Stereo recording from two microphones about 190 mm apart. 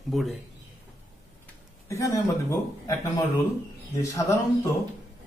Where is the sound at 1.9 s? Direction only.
15° left (ahead or behind).